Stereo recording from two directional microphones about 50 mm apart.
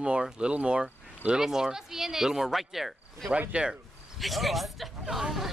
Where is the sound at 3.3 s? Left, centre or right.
Centre.